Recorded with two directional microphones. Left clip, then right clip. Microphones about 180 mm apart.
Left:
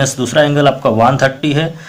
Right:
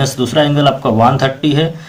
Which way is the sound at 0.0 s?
30° left (ahead or behind).